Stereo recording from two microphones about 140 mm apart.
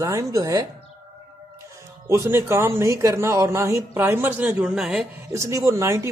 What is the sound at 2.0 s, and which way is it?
Speech, 20° right (ahead or behind).